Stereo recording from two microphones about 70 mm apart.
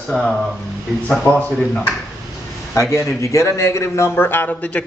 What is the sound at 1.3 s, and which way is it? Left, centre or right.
Speech, right.